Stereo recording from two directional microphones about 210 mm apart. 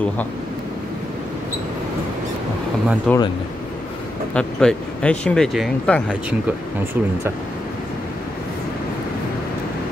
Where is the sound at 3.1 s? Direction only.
5° left (ahead or behind).